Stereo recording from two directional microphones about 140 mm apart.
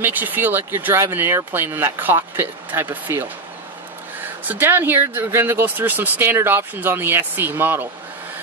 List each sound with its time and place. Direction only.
0.0 s speech: 15° right (ahead or behind)